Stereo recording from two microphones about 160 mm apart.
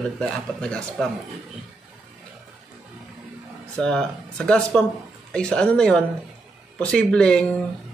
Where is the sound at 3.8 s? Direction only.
5° left (ahead or behind).